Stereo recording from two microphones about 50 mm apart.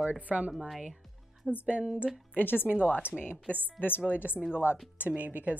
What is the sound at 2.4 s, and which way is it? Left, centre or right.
Speech, left.